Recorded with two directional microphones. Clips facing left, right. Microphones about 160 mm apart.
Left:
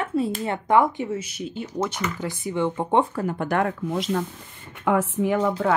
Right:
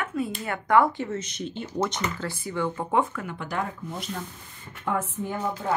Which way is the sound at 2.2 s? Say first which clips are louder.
Left 7 dB; 20° left (ahead or behind).